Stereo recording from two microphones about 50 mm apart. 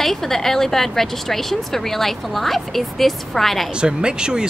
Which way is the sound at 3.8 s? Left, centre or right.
Centre.